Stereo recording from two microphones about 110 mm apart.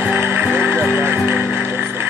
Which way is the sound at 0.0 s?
20° right (ahead or behind).